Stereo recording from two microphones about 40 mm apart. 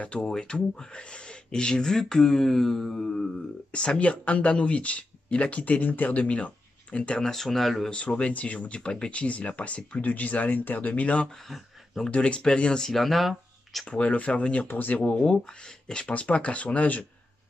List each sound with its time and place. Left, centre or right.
0.0 s speech: left
0.4 s speech: left
3.7 s speech: left
7.2 s speech: centre
7.9 s speech: left
11.2 s speech: centre
12.1 s speech: left
12.8 s speech: centre
13.8 s speech: left
14.7 s speech: left
15.4 s speech: left
16.1 s speech: left